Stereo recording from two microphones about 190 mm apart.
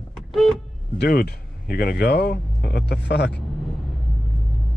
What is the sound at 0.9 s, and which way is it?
Speech, 55° left (ahead or behind).